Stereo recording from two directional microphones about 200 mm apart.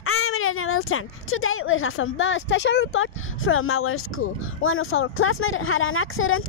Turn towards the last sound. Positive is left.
turn(degrees=90)